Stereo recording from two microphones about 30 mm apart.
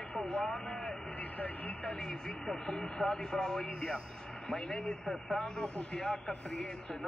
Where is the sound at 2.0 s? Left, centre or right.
Left.